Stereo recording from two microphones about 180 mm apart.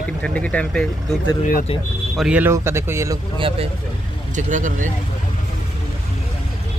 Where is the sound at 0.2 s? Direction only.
5° left (ahead or behind).